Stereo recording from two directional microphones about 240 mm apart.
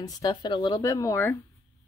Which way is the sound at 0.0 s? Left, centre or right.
Centre.